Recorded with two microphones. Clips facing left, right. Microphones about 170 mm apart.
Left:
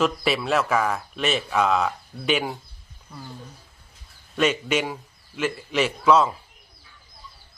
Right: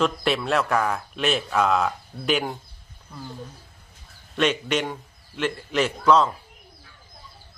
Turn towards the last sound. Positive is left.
turn(degrees=5)  # may be behind; listen again after turning